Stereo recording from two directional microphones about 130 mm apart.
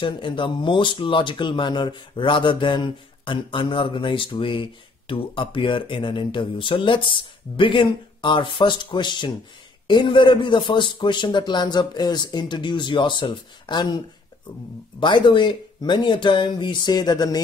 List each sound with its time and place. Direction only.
0.0 s speech: 40° left (ahead or behind)